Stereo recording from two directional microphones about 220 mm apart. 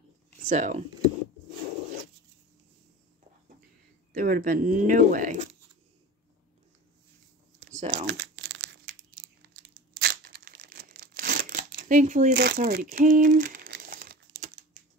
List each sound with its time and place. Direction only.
0.5 s speech: 35° right (ahead or behind)
4.1 s speech: 40° right (ahead or behind)
7.7 s speech: 30° right (ahead or behind)
8.1 s crumpling: 55° right (ahead or behind)
14.4 s computer keyboard: 35° right (ahead or behind)